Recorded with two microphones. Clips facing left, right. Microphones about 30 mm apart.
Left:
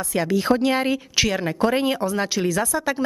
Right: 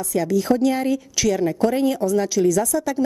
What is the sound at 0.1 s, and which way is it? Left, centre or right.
A woman's voice, left.